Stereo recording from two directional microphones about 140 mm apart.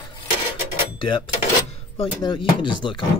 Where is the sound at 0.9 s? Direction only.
35° left (ahead or behind).